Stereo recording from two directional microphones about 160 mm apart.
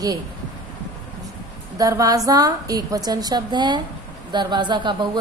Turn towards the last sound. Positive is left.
turn(degrees=-30)  # may be behind; listen again after turning